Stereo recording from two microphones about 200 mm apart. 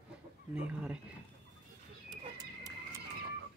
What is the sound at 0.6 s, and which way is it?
Speech, 5° right (ahead or behind).